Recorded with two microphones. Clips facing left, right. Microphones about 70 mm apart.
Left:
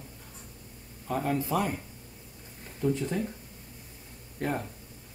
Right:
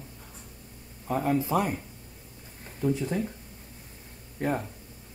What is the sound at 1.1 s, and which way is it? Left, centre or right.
Speech, centre.